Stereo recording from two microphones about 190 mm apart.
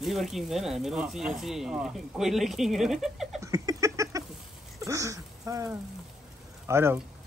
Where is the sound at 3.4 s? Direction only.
15° right (ahead or behind).